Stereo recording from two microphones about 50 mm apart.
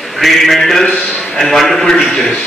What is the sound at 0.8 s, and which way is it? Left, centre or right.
Speech, centre.